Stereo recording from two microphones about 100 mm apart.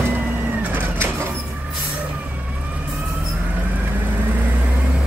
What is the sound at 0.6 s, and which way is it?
Bird, 20° right (ahead or behind).